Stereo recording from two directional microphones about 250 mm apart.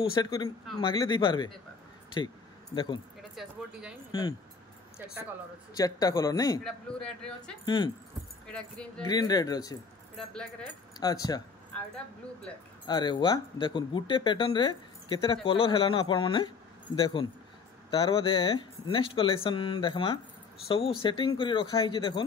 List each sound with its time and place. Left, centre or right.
0.1 s a man's voice: centre
2.7 s speech: centre
3.2 s speech: centre
4.1 s a man's voice: centre
5.8 s a man's voice: centre
6.6 s speech: centre
7.6 s a man's voice: centre
8.5 s speech: centre
9.0 s a man's voice: centre
10.1 s speech: centre
11.0 s a man's voice: centre
12.8 s speech: centre